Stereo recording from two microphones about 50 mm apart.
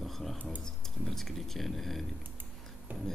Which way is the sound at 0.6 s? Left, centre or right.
Centre.